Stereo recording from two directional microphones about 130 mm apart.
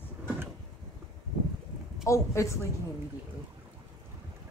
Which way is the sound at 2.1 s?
25° left (ahead or behind).